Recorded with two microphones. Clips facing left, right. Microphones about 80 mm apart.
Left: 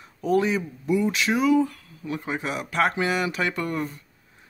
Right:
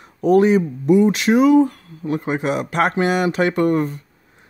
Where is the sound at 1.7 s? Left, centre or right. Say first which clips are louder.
Right 8 dB; right.